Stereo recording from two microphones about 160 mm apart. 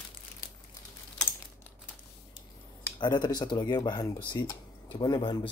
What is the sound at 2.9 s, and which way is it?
Speech, 25° left (ahead or behind).